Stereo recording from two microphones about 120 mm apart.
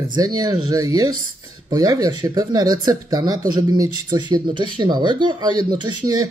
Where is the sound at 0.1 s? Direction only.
35° right (ahead or behind).